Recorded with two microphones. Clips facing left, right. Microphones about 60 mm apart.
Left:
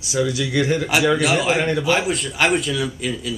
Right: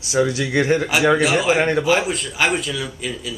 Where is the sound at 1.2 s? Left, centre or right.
Centre.